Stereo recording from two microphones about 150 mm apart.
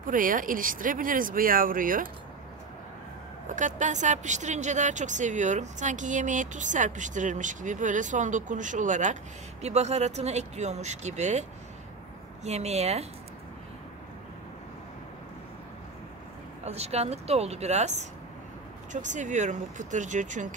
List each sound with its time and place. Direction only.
0.0 s speech: 65° right (ahead or behind)
3.4 s speech: 55° right (ahead or behind)
12.4 s speech: 45° right (ahead or behind)
16.6 s speech: 45° right (ahead or behind)